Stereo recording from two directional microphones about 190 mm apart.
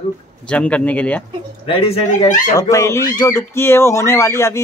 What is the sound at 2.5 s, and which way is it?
Speech, 15° left (ahead or behind).